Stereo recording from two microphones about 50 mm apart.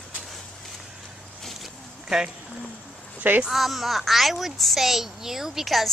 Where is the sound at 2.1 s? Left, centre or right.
Centre.